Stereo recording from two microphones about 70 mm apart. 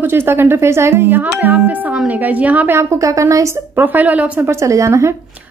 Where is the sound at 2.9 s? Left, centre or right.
Right.